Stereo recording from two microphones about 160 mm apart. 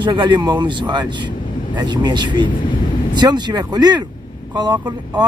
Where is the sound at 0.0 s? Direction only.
30° right (ahead or behind).